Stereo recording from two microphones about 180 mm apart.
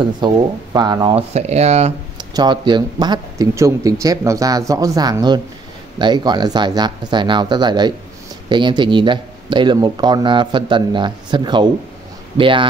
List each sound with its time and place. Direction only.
0.7 s speech: 25° right (ahead or behind)
1.3 s speech: 35° right (ahead or behind)
2.1 s speech: 25° right (ahead or behind)